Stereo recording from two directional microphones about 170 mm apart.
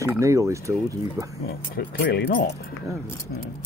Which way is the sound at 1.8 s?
65° left (ahead or behind).